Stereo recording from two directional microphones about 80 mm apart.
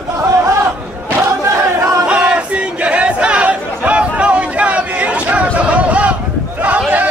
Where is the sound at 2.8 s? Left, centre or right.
Centre.